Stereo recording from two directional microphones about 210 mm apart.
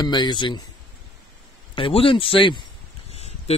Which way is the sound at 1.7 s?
25° left (ahead or behind).